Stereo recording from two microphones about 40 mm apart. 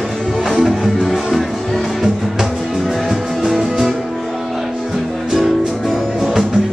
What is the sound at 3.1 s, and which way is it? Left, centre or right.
Music, centre.